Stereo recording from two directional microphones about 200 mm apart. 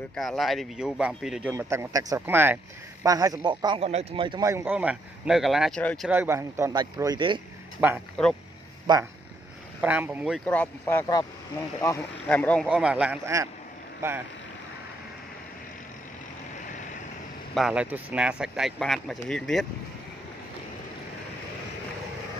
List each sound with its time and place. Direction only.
0.1 s speech: 5° left (ahead or behind)
6.0 s speech: 10° right (ahead or behind)
7.8 s speech: 5° right (ahead or behind)
8.2 s speech: 5° left (ahead or behind)
8.9 s speech: 20° right (ahead or behind)
9.8 s speech: 10° right (ahead or behind); by 12.6 s 5° left (ahead or behind)
12.6 s speech: 5° right (ahead or behind)
17.6 s speech: 5° right (ahead or behind)